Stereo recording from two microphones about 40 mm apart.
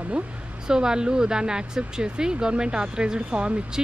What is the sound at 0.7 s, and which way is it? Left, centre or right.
Speech, centre.